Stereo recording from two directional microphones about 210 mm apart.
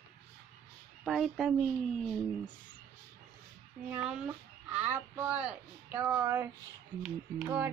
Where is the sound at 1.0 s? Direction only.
Centre (ahead or behind).